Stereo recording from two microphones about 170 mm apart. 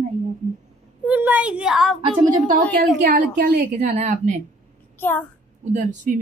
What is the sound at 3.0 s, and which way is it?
Speech, 55° right (ahead or behind).